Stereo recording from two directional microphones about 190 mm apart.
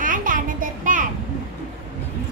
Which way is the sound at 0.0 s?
45° right (ahead or behind).